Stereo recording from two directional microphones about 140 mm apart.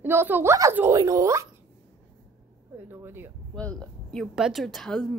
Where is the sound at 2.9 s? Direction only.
15° right (ahead or behind).